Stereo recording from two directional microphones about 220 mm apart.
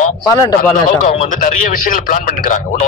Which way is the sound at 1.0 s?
35° left (ahead or behind).